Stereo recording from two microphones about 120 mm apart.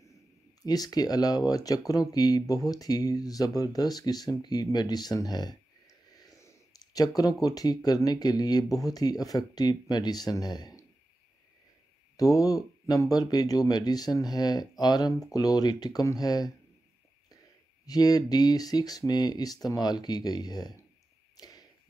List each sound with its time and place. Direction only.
0.7 s speech: 30° left (ahead or behind)
12.2 s speech: 30° left (ahead or behind)
17.8 s speech: 30° left (ahead or behind)
21.4 s a sound: 35° left (ahead or behind)